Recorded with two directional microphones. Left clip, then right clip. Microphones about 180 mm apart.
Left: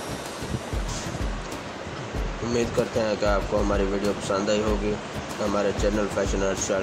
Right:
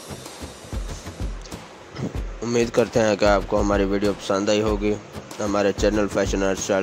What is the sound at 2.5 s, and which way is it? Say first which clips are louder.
Speech: right 5 dB; 50° right (ahead or behind).